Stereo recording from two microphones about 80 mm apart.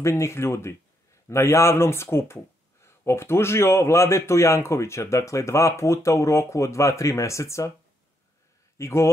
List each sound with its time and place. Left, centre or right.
0.0 s speech: left
8.7 s a man's voice: left